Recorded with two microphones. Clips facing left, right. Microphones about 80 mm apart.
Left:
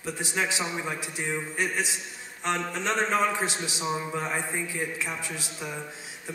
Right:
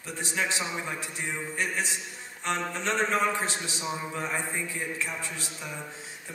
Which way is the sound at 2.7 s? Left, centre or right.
Centre.